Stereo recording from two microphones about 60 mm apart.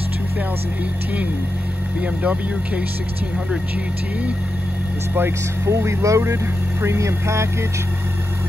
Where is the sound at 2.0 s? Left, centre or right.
Right.